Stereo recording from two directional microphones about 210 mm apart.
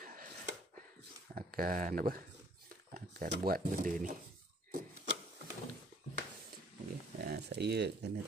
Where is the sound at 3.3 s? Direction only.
45° right (ahead or behind).